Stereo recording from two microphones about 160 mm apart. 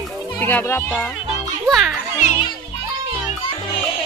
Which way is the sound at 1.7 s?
Centre (ahead or behind).